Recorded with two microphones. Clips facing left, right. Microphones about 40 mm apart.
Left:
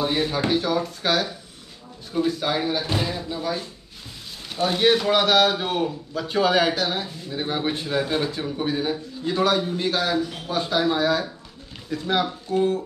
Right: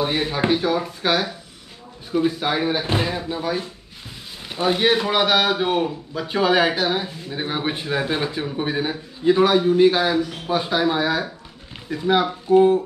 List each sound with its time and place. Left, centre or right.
0.0 s a man's voice: centre